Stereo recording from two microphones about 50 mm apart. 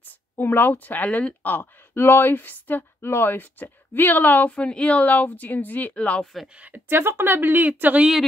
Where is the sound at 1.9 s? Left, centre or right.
Left.